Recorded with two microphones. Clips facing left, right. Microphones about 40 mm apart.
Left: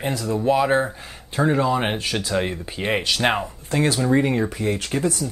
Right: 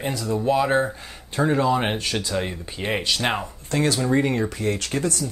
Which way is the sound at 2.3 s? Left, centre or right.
Centre.